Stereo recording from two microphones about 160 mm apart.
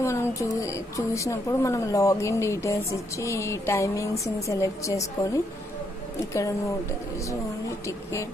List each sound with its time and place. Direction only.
0.0 s a woman's voice: 15° left (ahead or behind)